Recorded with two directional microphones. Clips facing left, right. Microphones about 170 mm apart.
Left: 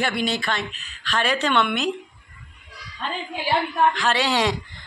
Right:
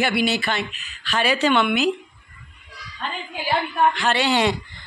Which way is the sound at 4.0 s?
Centre (ahead or behind).